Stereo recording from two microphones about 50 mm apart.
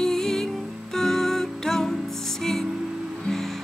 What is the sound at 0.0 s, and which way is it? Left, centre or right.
Music, centre.